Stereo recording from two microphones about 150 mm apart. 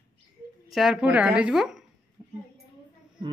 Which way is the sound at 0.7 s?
Centre (ahead or behind).